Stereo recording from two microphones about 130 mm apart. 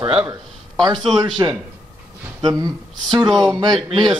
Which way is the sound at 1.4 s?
30° right (ahead or behind).